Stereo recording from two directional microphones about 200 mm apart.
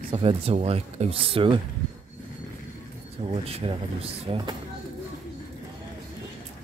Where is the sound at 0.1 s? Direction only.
30° right (ahead or behind).